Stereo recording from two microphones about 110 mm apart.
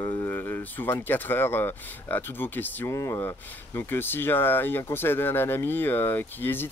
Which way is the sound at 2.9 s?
30° left (ahead or behind).